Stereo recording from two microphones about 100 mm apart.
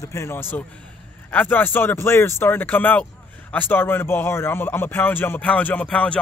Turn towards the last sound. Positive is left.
turn(degrees=10)  # may be behind; listen again after turning